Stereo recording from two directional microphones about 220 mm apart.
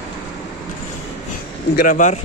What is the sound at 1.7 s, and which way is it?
Speech, 35° left (ahead or behind).